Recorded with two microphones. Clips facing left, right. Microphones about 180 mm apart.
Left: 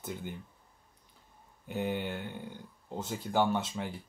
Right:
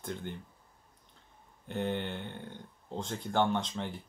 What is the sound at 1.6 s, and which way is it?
Speech, 10° left (ahead or behind).